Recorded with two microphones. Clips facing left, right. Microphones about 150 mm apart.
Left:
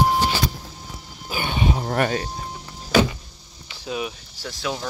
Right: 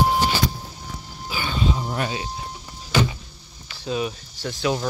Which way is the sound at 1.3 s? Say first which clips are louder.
Left 1 dB; 60° left (ahead or behind).